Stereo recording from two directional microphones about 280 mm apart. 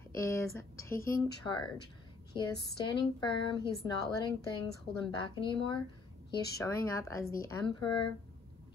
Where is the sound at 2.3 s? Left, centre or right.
Centre.